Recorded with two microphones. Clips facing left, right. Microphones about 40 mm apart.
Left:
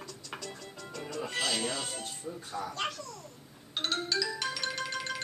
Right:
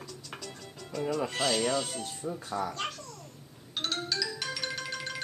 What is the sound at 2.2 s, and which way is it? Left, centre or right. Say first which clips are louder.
Speech: right 6 dB; right.